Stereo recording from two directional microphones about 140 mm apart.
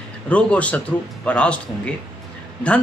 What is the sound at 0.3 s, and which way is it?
A man's voice, 10° left (ahead or behind).